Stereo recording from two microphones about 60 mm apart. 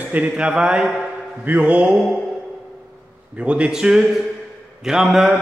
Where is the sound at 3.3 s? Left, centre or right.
Centre.